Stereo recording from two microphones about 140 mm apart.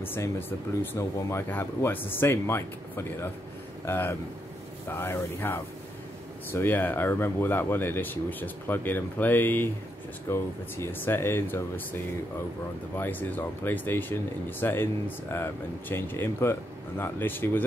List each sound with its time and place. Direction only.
0.0 s speech: 15° left (ahead or behind)